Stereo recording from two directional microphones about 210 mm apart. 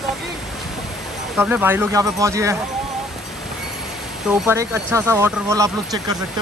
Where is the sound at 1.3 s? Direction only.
5° right (ahead or behind).